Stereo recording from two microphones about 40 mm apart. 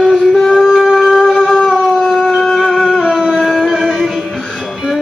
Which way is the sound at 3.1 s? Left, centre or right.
Centre.